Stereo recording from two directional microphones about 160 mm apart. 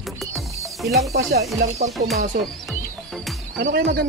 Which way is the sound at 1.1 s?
90° right.